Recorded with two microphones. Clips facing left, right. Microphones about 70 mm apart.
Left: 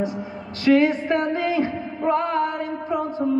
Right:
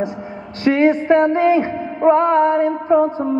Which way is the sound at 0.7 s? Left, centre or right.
Right.